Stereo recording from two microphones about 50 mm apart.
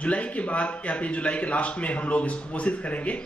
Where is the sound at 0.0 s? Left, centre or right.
Left.